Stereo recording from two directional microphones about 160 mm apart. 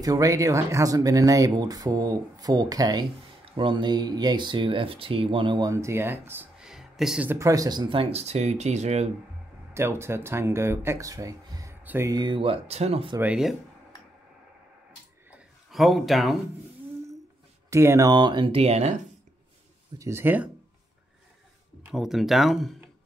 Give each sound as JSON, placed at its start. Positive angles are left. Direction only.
{"t": 0.0, "sound": "speech", "side_deg": -20}
{"t": 7.2, "sound": "speech", "side_deg": -20}
{"t": 9.8, "sound": "speech", "side_deg": -15}
{"t": 12.1, "sound": "speech", "side_deg": -30}
{"t": 13.2, "sound": "speech", "side_deg": -5}
{"t": 15.7, "sound": "speech", "side_deg": 0}
{"t": 17.6, "sound": "speech", "side_deg": -20}
{"t": 20.0, "sound": "speech", "side_deg": -15}
{"t": 21.9, "sound": "speech", "side_deg": 0}